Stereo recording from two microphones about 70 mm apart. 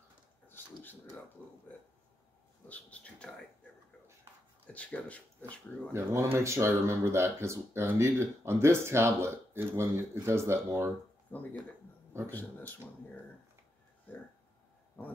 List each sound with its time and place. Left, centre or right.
1.4 s speech: left
2.7 s speech: centre
4.7 s speech: centre
5.9 s speech: right
11.3 s speech: left